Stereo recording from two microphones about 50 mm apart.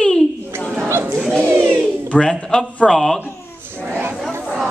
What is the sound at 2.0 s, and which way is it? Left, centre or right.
A man's voice, left.